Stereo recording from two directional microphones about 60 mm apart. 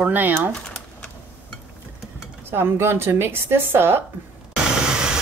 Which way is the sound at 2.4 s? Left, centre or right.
Right.